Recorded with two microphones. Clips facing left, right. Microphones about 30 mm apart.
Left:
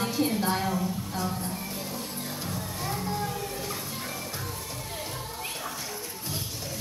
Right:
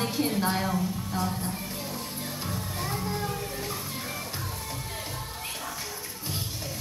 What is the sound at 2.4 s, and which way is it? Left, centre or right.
Music, centre.